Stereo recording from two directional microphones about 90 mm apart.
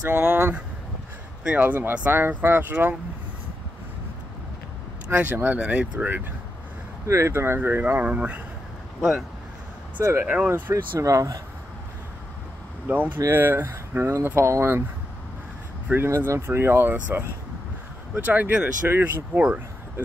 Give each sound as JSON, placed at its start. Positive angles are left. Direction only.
{"t": 0.0, "sound": "speech", "side_deg": -20}
{"t": 1.6, "sound": "speech", "side_deg": -20}
{"t": 5.0, "sound": "speech", "side_deg": -15}
{"t": 7.1, "sound": "speech", "side_deg": -30}
{"t": 7.8, "sound": "speech", "side_deg": -15}
{"t": 9.9, "sound": "speech", "side_deg": -30}
{"t": 10.2, "sound": "speech", "side_deg": -15}
{"t": 10.7, "sound": "speech", "side_deg": -35}
{"t": 12.9, "sound": "speech", "side_deg": -20}
{"t": 15.9, "sound": "speech", "side_deg": -25}